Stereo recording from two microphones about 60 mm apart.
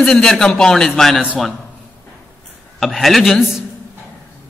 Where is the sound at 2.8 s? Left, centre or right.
Centre.